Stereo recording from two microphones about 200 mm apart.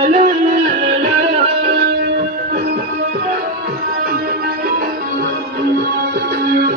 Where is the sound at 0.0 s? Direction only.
45° right (ahead or behind).